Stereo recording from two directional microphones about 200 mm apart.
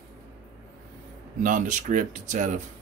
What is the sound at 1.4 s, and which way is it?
Speech, 40° right (ahead or behind).